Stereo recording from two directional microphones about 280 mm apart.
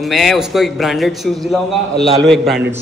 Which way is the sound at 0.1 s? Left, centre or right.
Centre.